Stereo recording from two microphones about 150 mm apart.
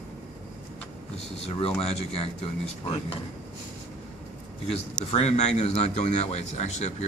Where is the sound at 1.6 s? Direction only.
45° left (ahead or behind).